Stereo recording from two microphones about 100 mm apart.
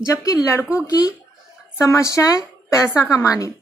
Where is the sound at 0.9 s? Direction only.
35° left (ahead or behind).